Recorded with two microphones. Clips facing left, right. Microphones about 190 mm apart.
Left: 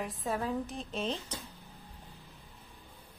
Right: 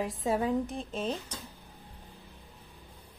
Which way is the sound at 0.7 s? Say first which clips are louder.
Right 2 dB; 10° right (ahead or behind).